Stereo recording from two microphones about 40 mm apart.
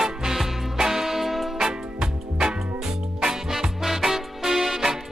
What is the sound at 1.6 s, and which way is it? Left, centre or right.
Music, centre.